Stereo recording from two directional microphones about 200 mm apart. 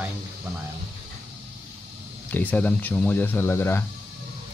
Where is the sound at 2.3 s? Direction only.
10° left (ahead or behind).